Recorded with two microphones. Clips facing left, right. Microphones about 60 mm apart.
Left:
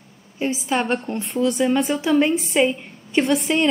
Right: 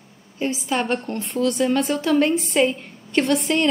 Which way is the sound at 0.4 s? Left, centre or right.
Centre.